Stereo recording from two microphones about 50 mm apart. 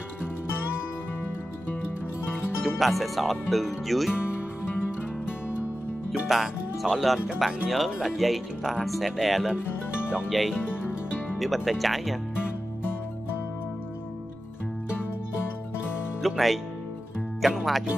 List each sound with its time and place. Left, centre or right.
2.6 s speech: centre
6.2 s speech: centre
10.0 s speech: right
11.3 s speech: centre
16.2 s music: centre
17.4 s speech: centre